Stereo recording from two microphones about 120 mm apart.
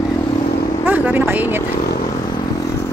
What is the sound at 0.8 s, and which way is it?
Vehicle, 15° right (ahead or behind).